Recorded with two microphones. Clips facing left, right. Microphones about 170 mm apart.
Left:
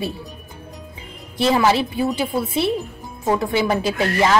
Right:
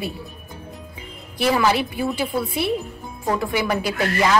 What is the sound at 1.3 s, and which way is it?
A woman's voice, 25° left (ahead or behind).